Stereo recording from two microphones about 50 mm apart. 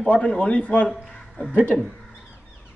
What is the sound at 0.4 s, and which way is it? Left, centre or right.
Speech, left.